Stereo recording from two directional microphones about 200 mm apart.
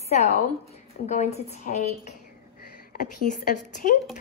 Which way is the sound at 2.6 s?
45° left (ahead or behind).